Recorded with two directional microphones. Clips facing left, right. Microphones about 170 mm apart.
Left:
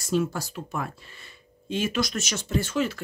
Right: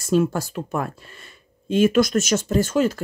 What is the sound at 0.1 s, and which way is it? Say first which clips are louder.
Speech: right 6 dB; 50° right (ahead or behind).